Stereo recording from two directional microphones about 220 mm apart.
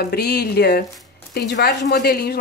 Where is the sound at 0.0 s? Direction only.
45° left (ahead or behind).